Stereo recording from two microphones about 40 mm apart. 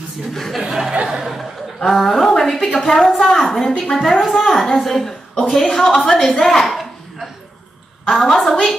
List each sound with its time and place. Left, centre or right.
0.3 s a woman's voice: centre
0.6 s a sound: centre
1.0 s chuckle: centre
1.9 s a woman's voice: centre
3.5 s a woman's voice: centre
3.9 s a woman's voice: centre